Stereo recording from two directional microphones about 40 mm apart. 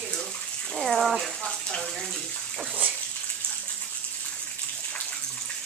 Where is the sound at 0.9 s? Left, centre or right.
Centre.